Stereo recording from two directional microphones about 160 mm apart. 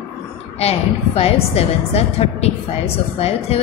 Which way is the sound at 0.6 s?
40° left (ahead or behind).